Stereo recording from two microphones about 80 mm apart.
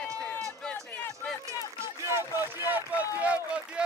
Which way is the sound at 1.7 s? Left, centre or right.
Right.